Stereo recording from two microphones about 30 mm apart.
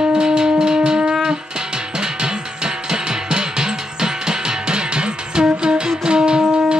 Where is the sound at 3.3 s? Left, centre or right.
Right.